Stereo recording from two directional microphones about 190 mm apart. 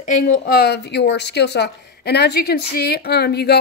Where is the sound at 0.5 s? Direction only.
55° left (ahead or behind).